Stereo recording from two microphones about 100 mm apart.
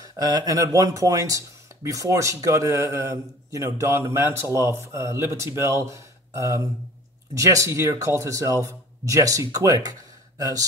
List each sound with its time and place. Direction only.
0.0 s speech: 40° right (ahead or behind)